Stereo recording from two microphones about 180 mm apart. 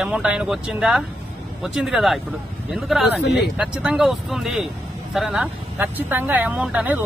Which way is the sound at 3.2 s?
65° left (ahead or behind).